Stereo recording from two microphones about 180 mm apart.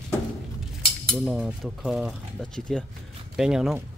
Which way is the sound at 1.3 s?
5° right (ahead or behind).